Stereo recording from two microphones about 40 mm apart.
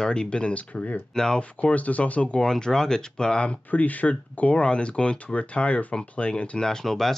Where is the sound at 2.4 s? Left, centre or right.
Centre.